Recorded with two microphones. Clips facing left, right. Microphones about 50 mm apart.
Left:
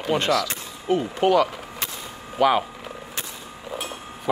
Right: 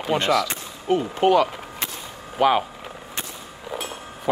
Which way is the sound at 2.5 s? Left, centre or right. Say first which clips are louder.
Even; right.